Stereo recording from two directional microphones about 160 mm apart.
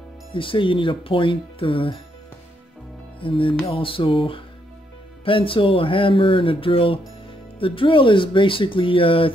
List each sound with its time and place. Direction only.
0.3 s speech: 30° left (ahead or behind)
3.2 s music: 35° left (ahead or behind)
3.6 s speech: 35° left (ahead or behind)